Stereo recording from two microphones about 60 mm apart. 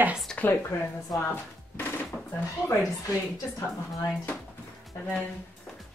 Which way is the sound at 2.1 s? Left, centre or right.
Centre.